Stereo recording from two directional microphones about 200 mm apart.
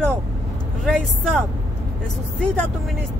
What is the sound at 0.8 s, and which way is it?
Speech, 5° left (ahead or behind).